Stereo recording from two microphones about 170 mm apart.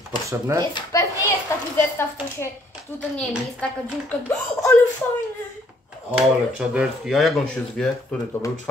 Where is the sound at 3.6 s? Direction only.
10° left (ahead or behind).